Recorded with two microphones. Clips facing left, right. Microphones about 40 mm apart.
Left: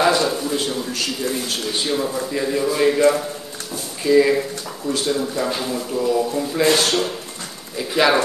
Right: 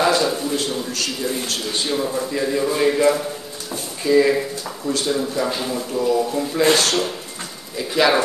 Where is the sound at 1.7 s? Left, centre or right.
Centre.